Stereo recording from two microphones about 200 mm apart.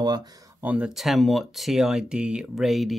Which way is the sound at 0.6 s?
5° right (ahead or behind).